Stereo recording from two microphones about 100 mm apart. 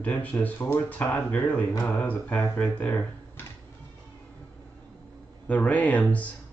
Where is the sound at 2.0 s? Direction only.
15° left (ahead or behind).